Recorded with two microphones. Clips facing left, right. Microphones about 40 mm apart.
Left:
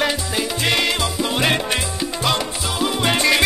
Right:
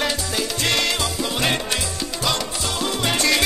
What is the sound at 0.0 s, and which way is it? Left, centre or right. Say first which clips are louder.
Music: left 3 dB; centre.